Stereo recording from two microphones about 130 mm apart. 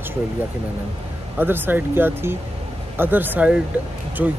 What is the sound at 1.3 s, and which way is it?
Speech, 15° right (ahead or behind).